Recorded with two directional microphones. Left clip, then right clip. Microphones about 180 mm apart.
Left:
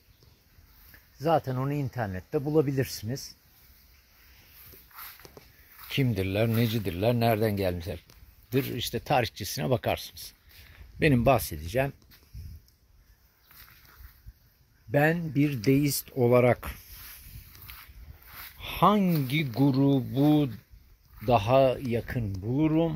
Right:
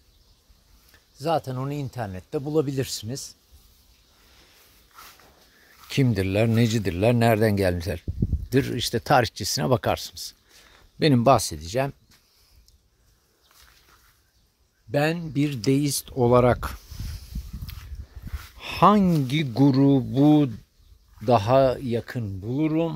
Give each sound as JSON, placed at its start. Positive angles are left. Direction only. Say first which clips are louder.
{"t": 1.2, "sound": "speech", "louder": "right 1 dB", "side_deg": 5}
{"t": 5.9, "sound": "speech", "louder": "right 5 dB", "side_deg": -40}
{"t": 14.9, "sound": "speech", "louder": "right 1 dB", "side_deg": -10}
{"t": 18.6, "sound": "a sound", "louder": "right 5 dB", "side_deg": -35}
{"t": 19.2, "sound": "speech", "louder": "right 5 dB", "side_deg": -40}
{"t": 21.3, "sound": "speech", "louder": "right 3 dB", "side_deg": -30}
{"t": 22.0, "sound": "speech", "louder": "right 2 dB", "side_deg": -10}